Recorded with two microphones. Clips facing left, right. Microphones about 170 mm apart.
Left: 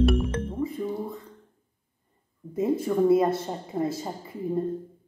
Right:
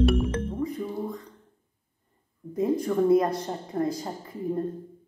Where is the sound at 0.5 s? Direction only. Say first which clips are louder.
Left 1 dB; 5° left (ahead or behind).